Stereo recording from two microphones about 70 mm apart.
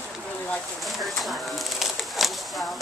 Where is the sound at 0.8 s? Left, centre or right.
Centre.